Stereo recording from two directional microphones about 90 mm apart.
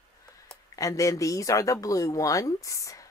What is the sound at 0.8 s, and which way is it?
Speech, 35° left (ahead or behind).